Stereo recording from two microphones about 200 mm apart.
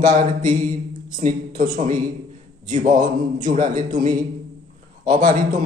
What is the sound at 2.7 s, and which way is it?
Mantra, 40° right (ahead or behind).